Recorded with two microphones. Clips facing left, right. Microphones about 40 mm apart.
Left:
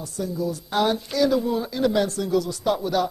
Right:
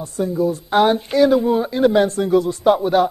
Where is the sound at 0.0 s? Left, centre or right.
Right.